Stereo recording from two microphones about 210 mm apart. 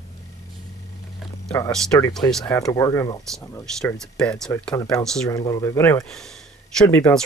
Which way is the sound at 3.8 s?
5° left (ahead or behind).